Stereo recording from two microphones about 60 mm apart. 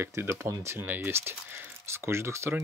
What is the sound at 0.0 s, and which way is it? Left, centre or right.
Speech, right.